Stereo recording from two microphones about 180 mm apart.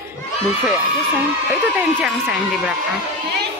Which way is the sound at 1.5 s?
10° right (ahead or behind).